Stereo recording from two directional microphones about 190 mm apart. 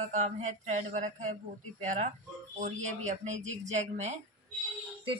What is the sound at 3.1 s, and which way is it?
Speech, 40° right (ahead or behind).